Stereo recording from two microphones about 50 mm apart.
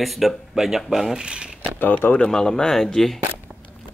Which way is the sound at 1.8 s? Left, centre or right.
Left.